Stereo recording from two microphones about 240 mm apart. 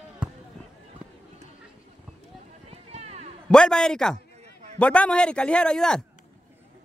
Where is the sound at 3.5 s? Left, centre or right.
Centre.